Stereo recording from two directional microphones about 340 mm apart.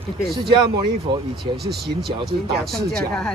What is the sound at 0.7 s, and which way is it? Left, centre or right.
Speech, centre.